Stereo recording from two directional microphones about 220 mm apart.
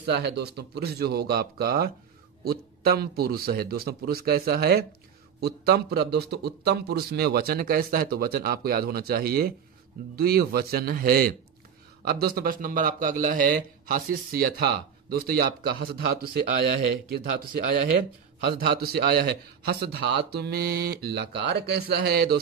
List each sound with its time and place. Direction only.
0.1 s a man's voice: 50° right (ahead or behind)
18.4 s a man's voice: 50° right (ahead or behind)